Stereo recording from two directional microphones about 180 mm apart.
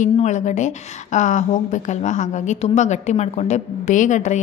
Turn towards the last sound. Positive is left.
turn(degrees=40)  # may be behind; listen again after turning